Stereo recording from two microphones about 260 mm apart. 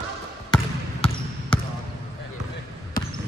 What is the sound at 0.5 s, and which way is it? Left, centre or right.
Trickle, centre.